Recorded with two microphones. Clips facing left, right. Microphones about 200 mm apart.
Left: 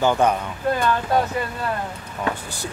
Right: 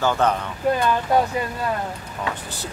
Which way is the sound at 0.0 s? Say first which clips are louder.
Left 2 dB; 15° left (ahead or behind).